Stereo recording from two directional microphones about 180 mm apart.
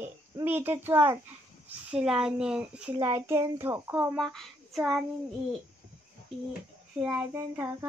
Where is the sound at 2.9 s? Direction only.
15° right (ahead or behind).